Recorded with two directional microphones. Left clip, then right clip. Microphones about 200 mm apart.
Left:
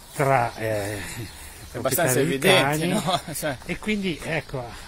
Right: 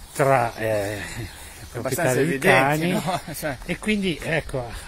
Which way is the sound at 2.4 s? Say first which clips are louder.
Right 1 dB; 25° right (ahead or behind).